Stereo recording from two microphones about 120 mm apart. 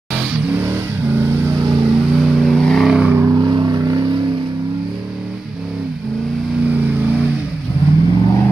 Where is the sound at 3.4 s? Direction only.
35° right (ahead or behind).